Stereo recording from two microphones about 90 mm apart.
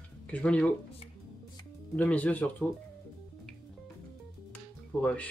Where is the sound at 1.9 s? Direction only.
15° left (ahead or behind).